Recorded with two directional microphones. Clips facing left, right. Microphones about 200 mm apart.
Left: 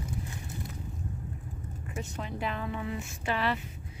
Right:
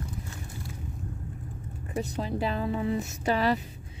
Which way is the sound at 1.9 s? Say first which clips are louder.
Right 7 dB; 35° right (ahead or behind).